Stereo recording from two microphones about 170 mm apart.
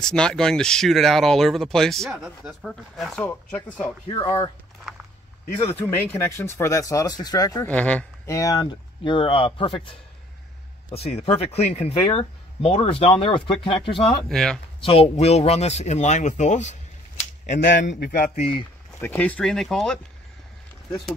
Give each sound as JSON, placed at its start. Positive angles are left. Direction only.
{"t": 0.0, "sound": "speech", "side_deg": 5}
{"t": 4.1, "sound": "speech", "side_deg": 20}
{"t": 5.7, "sound": "speech", "side_deg": 10}
{"t": 7.6, "sound": "speech", "side_deg": 10}
{"t": 8.4, "sound": "speech", "side_deg": 20}
{"t": 14.3, "sound": "speech", "side_deg": 5}
{"t": 14.8, "sound": "speech", "side_deg": 35}
{"t": 17.6, "sound": "a man's voice", "side_deg": 90}
{"t": 17.8, "sound": "speech", "side_deg": 60}
{"t": 18.9, "sound": "speech", "side_deg": 10}